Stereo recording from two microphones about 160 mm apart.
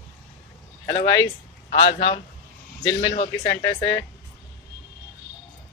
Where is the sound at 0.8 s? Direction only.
30° left (ahead or behind).